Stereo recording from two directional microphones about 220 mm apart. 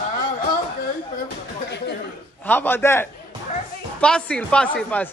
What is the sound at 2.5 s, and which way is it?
Speech, 10° left (ahead or behind).